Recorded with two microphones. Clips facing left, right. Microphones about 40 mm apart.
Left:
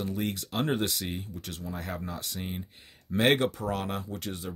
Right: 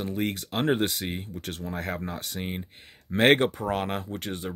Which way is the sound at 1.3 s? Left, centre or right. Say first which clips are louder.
Right 4 dB; right.